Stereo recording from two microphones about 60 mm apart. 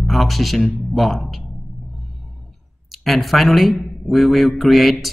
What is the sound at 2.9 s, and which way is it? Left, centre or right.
A man's voice, centre.